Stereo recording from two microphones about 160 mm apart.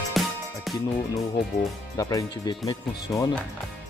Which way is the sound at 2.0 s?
20° left (ahead or behind).